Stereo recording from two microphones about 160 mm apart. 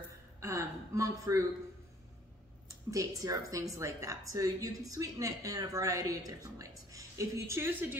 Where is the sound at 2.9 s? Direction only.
20° right (ahead or behind).